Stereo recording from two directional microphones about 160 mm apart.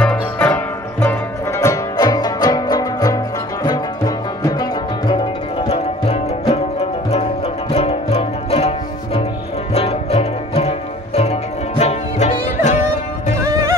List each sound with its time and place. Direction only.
0.0 s music: 10° left (ahead or behind)
1.6 s music: 20° left (ahead or behind); by 12.8 s 50° left (ahead or behind)
13.4 s music: 20° right (ahead or behind)